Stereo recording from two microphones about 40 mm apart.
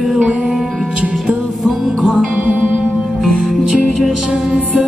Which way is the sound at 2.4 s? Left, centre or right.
Right.